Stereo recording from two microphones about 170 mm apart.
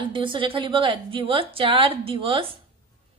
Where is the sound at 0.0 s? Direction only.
30° right (ahead or behind).